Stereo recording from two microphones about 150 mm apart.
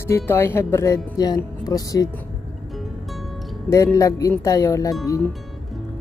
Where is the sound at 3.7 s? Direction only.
20° left (ahead or behind).